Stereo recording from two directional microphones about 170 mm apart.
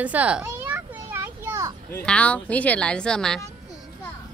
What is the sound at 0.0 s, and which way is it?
Children playing, 10° right (ahead or behind).